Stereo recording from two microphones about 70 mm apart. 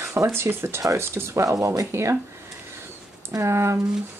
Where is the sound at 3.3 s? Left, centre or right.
Right.